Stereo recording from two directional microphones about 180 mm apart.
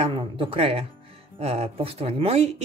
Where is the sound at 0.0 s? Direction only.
30° right (ahead or behind).